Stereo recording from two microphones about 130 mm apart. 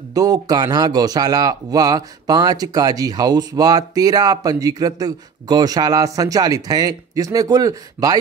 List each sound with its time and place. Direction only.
0.1 s a man's voice: 30° right (ahead or behind)